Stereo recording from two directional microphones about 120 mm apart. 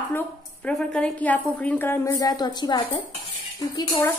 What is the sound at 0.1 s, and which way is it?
A woman's voice, 10° left (ahead or behind).